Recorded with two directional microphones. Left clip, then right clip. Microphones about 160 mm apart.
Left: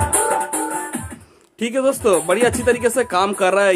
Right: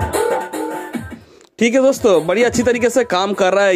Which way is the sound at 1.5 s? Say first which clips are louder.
Right 5 dB; 35° right (ahead or behind).